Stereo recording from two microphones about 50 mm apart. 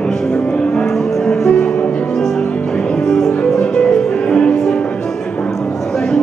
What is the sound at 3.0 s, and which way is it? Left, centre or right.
Music, centre.